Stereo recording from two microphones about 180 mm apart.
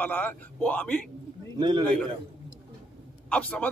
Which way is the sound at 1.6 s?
25° right (ahead or behind).